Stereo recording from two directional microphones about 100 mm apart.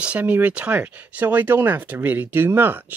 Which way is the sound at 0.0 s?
15° right (ahead or behind).